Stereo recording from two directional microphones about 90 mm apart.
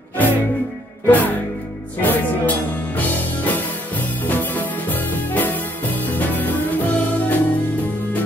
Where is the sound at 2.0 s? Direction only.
20° left (ahead or behind).